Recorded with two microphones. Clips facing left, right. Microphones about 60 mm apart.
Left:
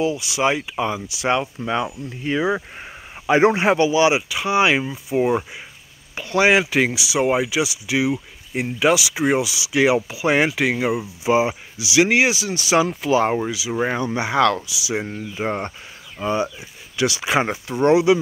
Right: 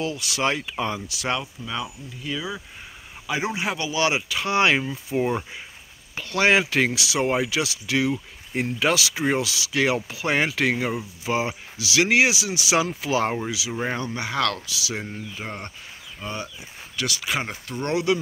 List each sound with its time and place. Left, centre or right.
0.0 s speech: centre
1.4 s speech: left
3.9 s speech: centre
14.8 s speech: centre
15.0 s speech: left
16.2 s speech: left
16.9 s speech: centre